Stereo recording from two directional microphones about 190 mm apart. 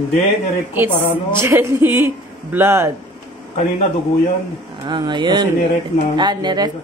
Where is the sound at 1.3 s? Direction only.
15° right (ahead or behind).